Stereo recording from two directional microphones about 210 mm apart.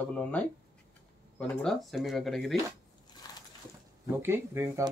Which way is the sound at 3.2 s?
20° left (ahead or behind).